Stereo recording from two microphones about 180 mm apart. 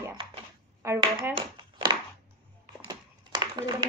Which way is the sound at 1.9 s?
25° right (ahead or behind).